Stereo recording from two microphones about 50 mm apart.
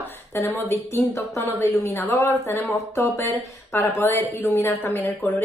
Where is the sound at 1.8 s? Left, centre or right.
Left.